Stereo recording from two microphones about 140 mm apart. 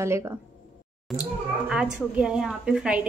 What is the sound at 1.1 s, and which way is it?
A woman's voice, centre (ahead or behind).